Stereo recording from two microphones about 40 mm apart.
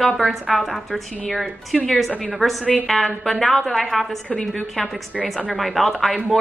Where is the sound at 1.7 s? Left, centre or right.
Centre.